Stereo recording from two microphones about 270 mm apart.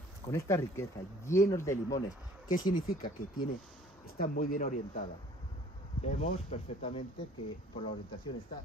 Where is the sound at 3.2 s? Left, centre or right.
Left.